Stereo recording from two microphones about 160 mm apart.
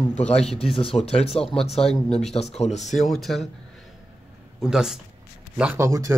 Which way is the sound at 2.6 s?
45° left (ahead or behind).